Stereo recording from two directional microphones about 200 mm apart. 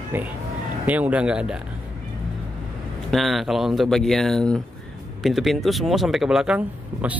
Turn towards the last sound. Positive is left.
turn(degrees=-5)  # may be behind; listen again after turning